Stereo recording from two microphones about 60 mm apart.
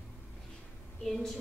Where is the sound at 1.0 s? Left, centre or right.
Centre.